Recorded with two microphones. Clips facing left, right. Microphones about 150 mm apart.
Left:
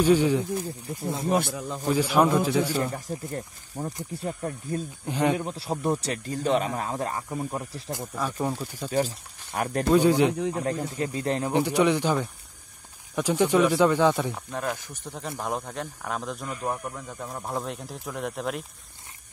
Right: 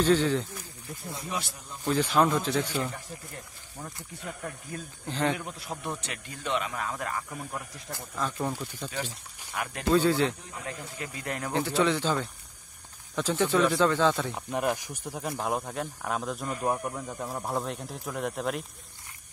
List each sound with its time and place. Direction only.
0.0 s speech: 10° left (ahead or behind)
0.9 s speech: 25° left (ahead or behind)
1.3 s a man's voice: 60° left (ahead or behind)
1.9 s speech: 10° left (ahead or behind)
3.1 s speech: 40° left (ahead or behind)
5.0 s speech: 15° left (ahead or behind)
5.4 s speech: 30° left (ahead or behind)
7.9 s speech: 10° left (ahead or behind)
8.9 s speech: 40° left (ahead or behind)
9.9 s speech: 15° left (ahead or behind)
10.6 s speech: 35° left (ahead or behind)
11.5 s speech: 15° left (ahead or behind)
14.3 s speech: 15° right (ahead or behind); by 18.7 s centre (ahead or behind)